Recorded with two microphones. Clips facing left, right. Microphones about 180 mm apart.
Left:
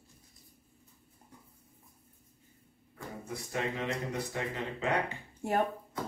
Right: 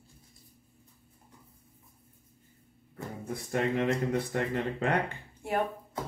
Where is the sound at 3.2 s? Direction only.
50° right (ahead or behind).